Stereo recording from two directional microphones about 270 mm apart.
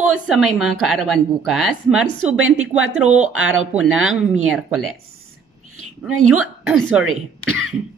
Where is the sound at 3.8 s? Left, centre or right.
Centre.